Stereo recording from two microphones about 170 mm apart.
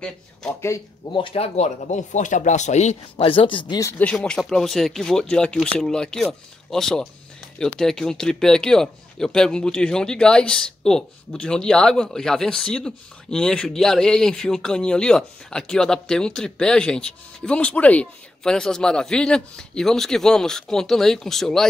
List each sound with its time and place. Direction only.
0.0 s speech: 5° left (ahead or behind)
0.6 s speech: 15° left (ahead or behind)
1.1 s speech: 35° left (ahead or behind)
4.0 s speech: 5° left (ahead or behind)